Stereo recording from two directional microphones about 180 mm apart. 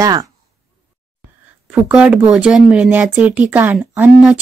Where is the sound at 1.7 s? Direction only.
5° right (ahead or behind).